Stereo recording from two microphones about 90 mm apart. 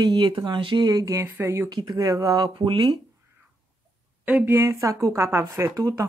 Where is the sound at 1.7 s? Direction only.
45° right (ahead or behind).